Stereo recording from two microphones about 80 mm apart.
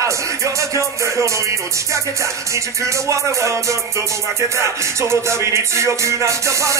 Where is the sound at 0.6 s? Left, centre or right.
Right.